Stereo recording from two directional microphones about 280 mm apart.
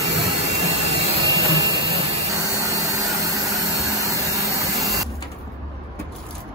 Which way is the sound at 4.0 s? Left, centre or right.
Centre.